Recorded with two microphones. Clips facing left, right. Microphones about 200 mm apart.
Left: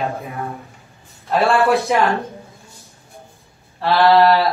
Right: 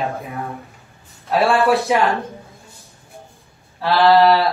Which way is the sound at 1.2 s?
Centre (ahead or behind).